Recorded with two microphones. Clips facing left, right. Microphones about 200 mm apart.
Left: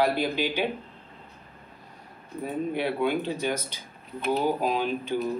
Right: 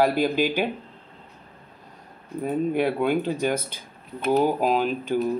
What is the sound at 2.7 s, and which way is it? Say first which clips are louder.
Speech: right 2 dB; 45° right (ahead or behind).